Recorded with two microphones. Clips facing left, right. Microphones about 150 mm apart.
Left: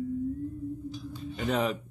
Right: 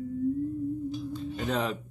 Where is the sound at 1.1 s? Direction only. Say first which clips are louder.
Left 3 dB; 5° left (ahead or behind).